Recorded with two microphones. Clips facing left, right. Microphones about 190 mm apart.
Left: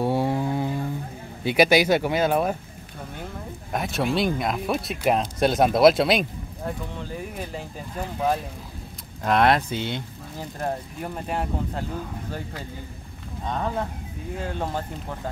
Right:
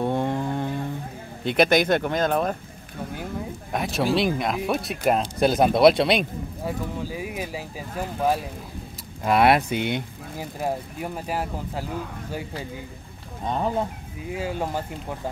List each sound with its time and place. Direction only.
0.0 s a sound: 5° left (ahead or behind)
1.4 s speech: 5° left (ahead or behind)
3.7 s speech: centre (ahead or behind)
13.5 s speech: 15° right (ahead or behind)